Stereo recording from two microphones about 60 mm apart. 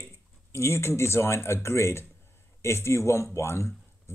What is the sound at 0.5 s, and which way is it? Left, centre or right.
Speech, left.